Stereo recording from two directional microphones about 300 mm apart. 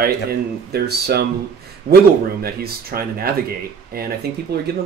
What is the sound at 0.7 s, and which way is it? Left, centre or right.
Speech, right.